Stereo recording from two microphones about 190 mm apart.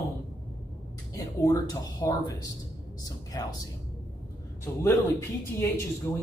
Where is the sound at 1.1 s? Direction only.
20° left (ahead or behind).